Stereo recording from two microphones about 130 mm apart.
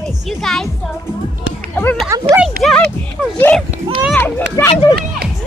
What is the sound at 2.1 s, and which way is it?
Speech, 25° right (ahead or behind).